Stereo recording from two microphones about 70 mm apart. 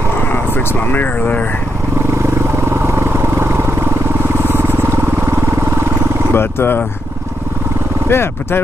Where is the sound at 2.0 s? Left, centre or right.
Right.